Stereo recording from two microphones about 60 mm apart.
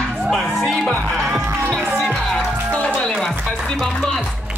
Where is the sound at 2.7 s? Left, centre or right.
Left.